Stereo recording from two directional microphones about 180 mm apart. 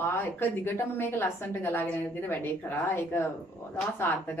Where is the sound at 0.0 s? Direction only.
10° left (ahead or behind).